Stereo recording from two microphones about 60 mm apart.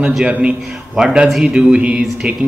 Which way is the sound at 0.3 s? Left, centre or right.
Centre.